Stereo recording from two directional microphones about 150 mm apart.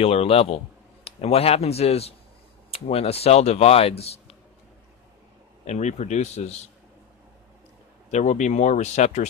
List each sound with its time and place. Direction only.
0.0 s a man's voice: 40° left (ahead or behind)
5.7 s speech: 50° left (ahead or behind)
8.1 s speech: 55° left (ahead or behind)